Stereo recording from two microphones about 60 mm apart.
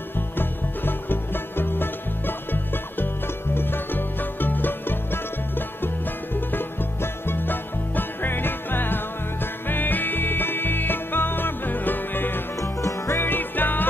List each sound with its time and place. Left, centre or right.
0.4 s music: left
6.3 s music: left
12.5 s music: left